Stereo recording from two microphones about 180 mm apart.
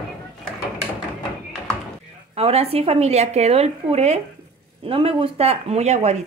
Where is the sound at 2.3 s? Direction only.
35° right (ahead or behind).